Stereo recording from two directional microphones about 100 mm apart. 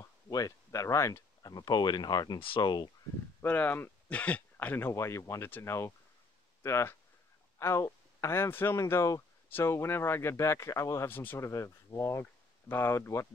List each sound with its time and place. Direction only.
0.0 s a sound: 35° left (ahead or behind)
1.5 s speech: 45° left (ahead or behind)
3.4 s speech: 20° left (ahead or behind)